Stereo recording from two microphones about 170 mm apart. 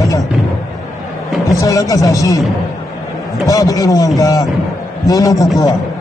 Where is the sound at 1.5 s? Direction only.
20° left (ahead or behind).